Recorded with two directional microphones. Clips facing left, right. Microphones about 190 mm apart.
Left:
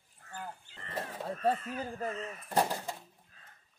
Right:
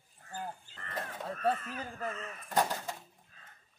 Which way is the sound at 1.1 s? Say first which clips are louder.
Left 2 dB; 10° left (ahead or behind).